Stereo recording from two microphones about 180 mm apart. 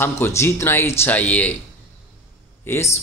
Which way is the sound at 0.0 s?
10° left (ahead or behind).